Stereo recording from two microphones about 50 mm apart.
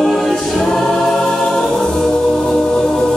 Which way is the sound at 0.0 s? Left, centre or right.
Centre.